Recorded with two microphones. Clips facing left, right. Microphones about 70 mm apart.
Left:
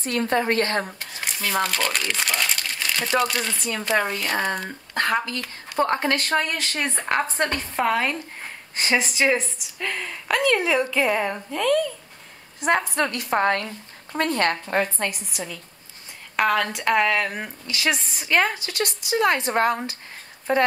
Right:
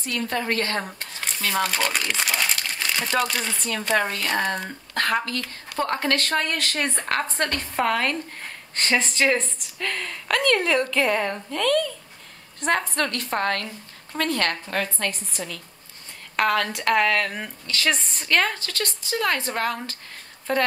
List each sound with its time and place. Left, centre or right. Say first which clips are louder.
0.0 s a woman's voice: left 4 dB; left
0.7 s a woman's voice: left 2 dB; centre